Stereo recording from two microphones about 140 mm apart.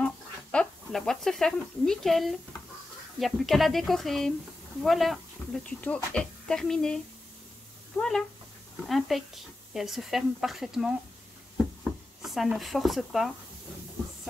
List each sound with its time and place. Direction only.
0.0 s speech: 5° left (ahead or behind)
8.0 s speech: 15° left (ahead or behind)
8.8 s speech: centre (ahead or behind)
12.2 s speech: centre (ahead or behind)